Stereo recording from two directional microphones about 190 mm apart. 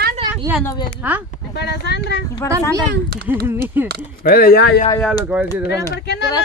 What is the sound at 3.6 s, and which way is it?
Speech, 10° right (ahead or behind).